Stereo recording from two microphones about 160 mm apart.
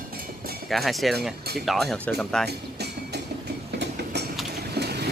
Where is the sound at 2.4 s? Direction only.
90° right.